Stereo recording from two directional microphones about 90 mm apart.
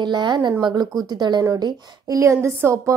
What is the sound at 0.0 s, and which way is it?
A woman's voice, 55° right (ahead or behind).